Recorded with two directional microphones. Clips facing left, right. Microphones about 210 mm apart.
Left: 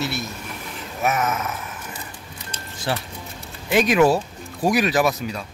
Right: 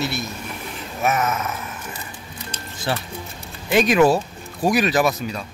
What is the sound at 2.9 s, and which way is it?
Speech, 10° left (ahead or behind).